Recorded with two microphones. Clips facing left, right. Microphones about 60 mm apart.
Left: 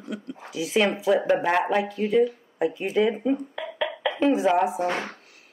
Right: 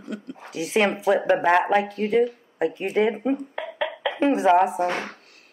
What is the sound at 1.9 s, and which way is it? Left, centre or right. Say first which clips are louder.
Speech: even; right.